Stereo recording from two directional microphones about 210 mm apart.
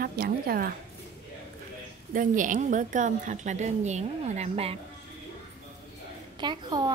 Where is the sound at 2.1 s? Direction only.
40° right (ahead or behind).